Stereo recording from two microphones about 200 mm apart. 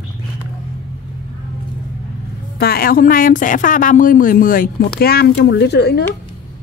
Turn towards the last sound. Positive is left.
turn(degrees=55)  # may be behind; listen again after turning